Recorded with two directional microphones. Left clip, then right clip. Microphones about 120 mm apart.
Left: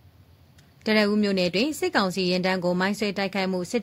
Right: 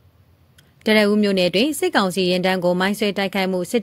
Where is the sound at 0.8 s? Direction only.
30° right (ahead or behind).